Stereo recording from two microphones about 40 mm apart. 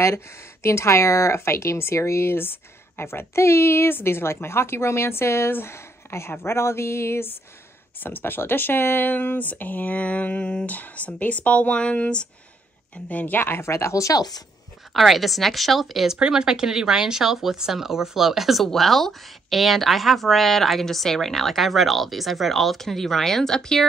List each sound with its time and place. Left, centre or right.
1.4 s speech: left
8.0 s speech: left
13.1 s speech: left
13.4 s speech: left
15.0 s speech: centre
16.2 s speech: centre